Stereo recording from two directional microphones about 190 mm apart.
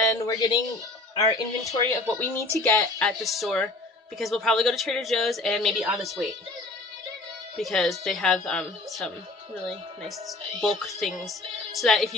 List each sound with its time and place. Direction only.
0.2 s speech: 20° left (ahead or behind)
3.0 s speech: centre (ahead or behind)
7.5 s speech: centre (ahead or behind)
10.6 s speech: centre (ahead or behind)